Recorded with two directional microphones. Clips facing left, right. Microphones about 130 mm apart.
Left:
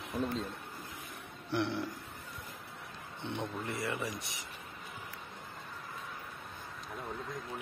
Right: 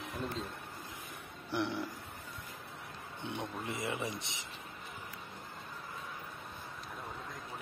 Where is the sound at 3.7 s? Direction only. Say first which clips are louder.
Right 1 dB; 20° right (ahead or behind).